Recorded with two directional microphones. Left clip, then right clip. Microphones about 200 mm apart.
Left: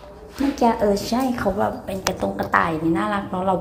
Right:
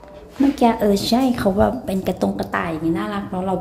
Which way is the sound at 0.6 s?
20° right (ahead or behind).